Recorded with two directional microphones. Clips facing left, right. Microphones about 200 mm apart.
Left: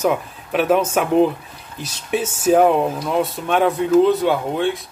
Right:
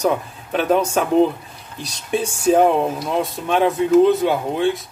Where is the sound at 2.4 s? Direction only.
5° left (ahead or behind).